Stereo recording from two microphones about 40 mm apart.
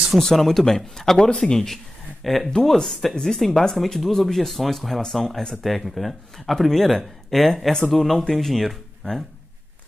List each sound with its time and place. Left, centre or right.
0.2 s speech: centre
1.2 s speech: left
2.2 s speech: centre